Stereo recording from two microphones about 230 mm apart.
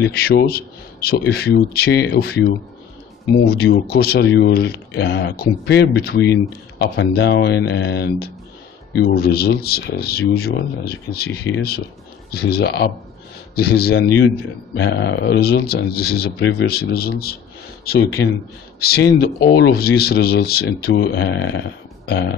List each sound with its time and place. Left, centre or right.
0.0 s speech: left